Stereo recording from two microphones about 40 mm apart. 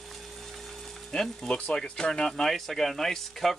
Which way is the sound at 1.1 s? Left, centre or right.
Centre.